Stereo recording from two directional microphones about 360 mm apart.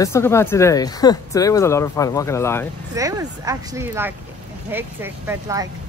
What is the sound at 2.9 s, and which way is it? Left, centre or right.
Speech, centre.